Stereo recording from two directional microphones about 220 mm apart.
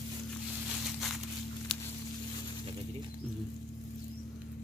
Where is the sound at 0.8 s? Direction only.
Centre (ahead or behind).